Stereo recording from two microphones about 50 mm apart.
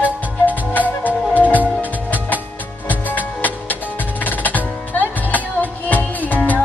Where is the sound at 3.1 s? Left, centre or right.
Left.